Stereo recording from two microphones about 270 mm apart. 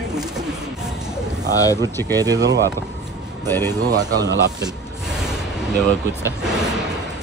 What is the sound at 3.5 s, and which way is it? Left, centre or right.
Speech, centre.